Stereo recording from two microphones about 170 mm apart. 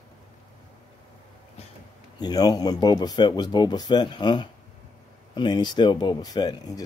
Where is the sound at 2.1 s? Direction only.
25° left (ahead or behind).